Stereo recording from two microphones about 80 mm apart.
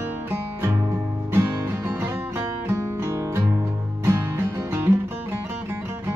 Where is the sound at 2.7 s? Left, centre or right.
Right.